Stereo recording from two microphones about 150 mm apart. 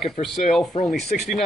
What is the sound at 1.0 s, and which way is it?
Speech, 50° left (ahead or behind).